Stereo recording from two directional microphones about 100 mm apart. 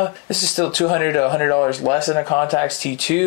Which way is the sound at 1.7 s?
10° left (ahead or behind).